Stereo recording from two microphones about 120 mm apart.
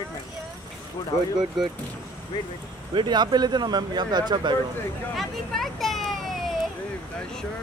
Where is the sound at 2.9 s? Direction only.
40° right (ahead or behind).